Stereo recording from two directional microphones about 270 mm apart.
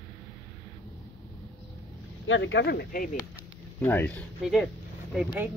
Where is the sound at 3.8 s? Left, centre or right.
Centre.